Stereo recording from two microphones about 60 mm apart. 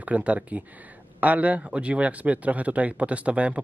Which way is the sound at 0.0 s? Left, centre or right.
Right.